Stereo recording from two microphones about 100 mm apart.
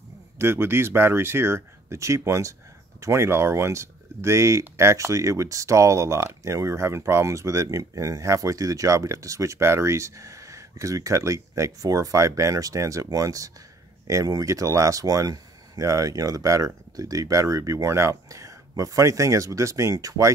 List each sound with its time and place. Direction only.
0.4 s speech: 25° right (ahead or behind)